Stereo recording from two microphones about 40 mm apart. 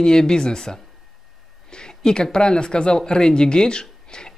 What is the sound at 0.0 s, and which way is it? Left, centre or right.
Speech, centre.